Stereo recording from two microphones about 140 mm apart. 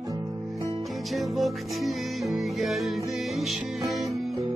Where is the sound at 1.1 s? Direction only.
Centre (ahead or behind).